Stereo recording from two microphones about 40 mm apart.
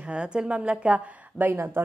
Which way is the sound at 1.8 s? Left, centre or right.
Right.